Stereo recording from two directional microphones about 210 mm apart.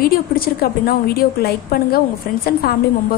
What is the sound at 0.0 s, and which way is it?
A woman's voice, 45° left (ahead or behind).